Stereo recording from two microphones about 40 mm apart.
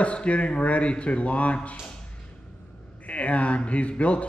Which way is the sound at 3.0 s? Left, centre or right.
Left.